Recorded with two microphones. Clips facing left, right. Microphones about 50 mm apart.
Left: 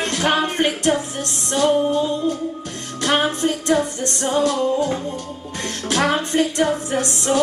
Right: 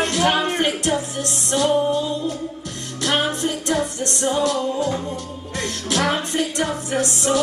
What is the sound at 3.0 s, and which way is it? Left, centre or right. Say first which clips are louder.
Music: left 2 dB; left.